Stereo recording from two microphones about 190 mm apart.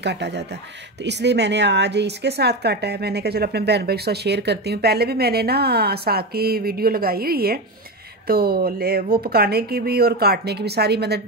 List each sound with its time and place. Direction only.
0.0 s a woman's voice: 65° right (ahead or behind)